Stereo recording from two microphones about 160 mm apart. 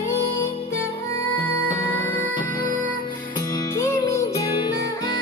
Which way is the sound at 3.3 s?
20° left (ahead or behind).